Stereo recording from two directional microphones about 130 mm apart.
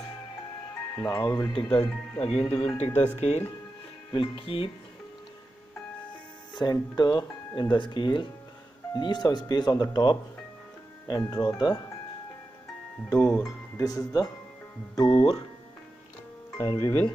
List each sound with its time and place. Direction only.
0.9 s speech: 20° left (ahead or behind)
1.2 s speech: 35° left (ahead or behind)
2.1 s speech: 50° left (ahead or behind)
4.1 s speech: 40° left (ahead or behind)
6.5 s speech: 30° left (ahead or behind)
13.4 s speech: 25° left (ahead or behind)
15.0 s speech: 40° left (ahead or behind)
16.5 s speech: 25° left (ahead or behind)